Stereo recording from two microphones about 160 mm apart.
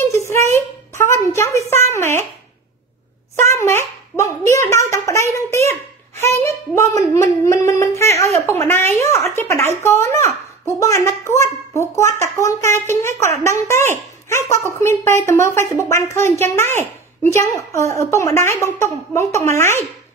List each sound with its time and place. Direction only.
0.9 s a woman's voice: 15° left (ahead or behind)
3.4 s a child's voice: 15° left (ahead or behind)